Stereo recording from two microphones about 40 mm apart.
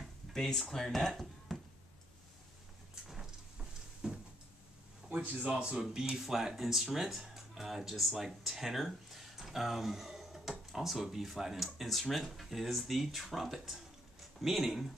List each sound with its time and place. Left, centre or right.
0.3 s speech: centre
4.0 s a sound: right
5.4 s speech: right
6.0 s speech: centre